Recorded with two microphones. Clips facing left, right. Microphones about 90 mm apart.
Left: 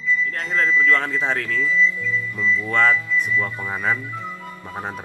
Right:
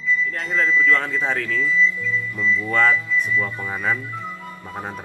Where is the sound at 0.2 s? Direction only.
Centre (ahead or behind).